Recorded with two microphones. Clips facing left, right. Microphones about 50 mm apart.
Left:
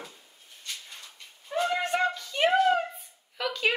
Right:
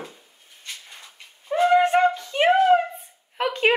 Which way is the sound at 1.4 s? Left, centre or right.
Right.